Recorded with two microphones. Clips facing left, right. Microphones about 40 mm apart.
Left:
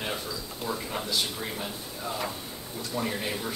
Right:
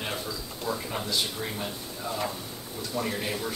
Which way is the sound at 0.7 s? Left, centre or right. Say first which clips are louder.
Right 1 dB; centre.